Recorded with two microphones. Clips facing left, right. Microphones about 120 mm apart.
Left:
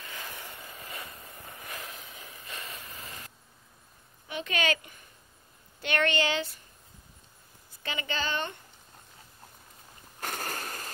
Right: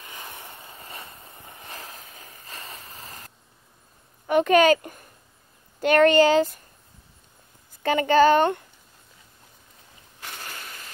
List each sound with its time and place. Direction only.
0.0 s vehicle: 20° right (ahead or behind); by 3.3 s 40° right (ahead or behind)
4.3 s a woman's voice: 50° right (ahead or behind)
7.8 s a woman's voice: 50° right (ahead or behind)
10.2 s a sound: 45° left (ahead or behind)